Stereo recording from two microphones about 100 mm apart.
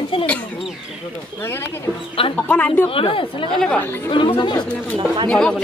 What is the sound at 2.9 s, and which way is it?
Speech, 65° left (ahead or behind).